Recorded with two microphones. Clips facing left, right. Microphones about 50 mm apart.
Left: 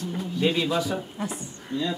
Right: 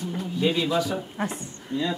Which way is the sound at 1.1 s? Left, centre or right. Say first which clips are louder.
Right 2 dB; right.